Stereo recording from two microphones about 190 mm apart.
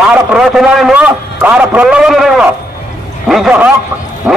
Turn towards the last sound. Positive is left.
turn(degrees=-5)  # may be behind; listen again after turning